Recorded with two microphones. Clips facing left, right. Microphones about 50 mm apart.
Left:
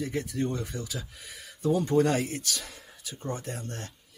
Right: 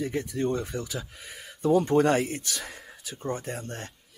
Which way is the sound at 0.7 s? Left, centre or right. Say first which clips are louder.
Right 3 dB; right.